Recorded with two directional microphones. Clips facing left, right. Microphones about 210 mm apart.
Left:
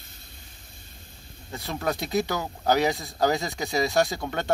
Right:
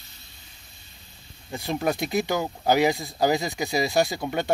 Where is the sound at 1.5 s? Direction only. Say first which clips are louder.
Right 3 dB; 15° right (ahead or behind).